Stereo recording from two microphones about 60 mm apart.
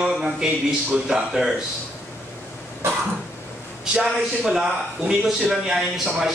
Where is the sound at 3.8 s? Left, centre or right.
Centre.